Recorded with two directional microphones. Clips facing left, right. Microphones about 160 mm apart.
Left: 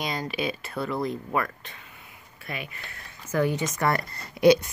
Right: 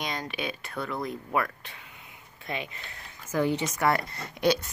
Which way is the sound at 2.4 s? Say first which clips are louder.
Right 1 dB; 25° right (ahead or behind).